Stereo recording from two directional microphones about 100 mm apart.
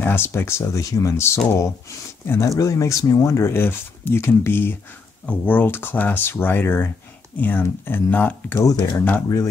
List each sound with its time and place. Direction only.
0.0 s speech: 25° left (ahead or behind)
8.5 s speech: 35° left (ahead or behind)